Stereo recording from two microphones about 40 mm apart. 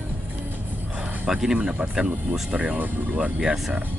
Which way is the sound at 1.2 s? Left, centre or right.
Centre.